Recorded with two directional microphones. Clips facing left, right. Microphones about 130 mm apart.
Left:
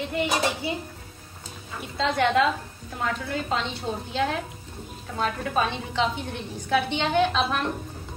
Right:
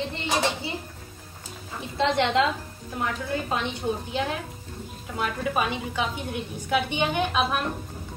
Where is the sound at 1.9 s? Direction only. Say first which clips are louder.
Even; 20° right (ahead or behind).